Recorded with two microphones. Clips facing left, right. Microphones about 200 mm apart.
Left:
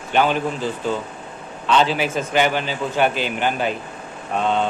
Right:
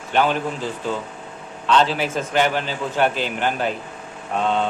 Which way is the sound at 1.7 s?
5° left (ahead or behind).